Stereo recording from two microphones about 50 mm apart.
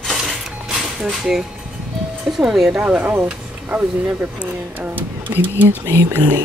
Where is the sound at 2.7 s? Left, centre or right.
Right.